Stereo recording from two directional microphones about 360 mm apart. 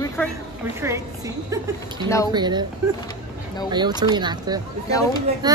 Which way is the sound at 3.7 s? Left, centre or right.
Centre.